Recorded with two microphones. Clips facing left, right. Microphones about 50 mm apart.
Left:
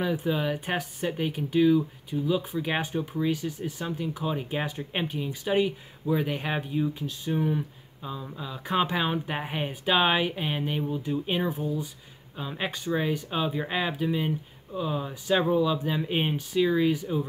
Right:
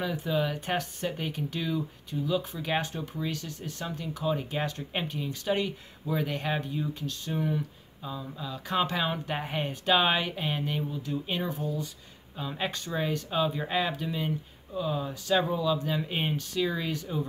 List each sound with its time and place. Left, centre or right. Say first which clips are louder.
0.0 s speech: left 2 dB; centre